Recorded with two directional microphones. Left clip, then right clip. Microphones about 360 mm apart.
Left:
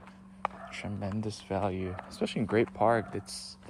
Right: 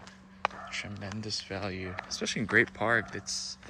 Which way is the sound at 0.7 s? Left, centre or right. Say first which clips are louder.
Even; centre.